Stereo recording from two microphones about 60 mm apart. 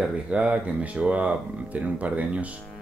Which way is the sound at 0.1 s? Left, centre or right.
Centre.